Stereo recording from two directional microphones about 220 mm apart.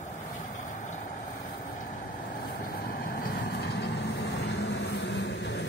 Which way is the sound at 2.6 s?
45° left (ahead or behind).